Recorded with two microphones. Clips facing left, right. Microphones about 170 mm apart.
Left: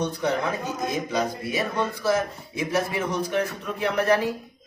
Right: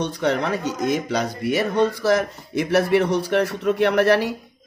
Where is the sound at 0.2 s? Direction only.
80° right.